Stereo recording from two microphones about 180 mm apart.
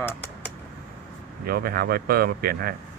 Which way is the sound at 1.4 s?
55° right (ahead or behind).